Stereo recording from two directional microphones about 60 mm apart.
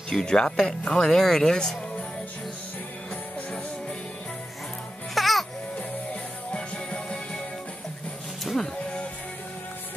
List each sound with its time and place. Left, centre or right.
0.1 s speech: centre
5.1 s music: centre
6.5 s music: centre
8.5 s music: centre